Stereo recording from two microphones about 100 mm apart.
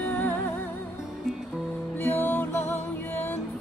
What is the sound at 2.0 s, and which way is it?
Music, 20° left (ahead or behind).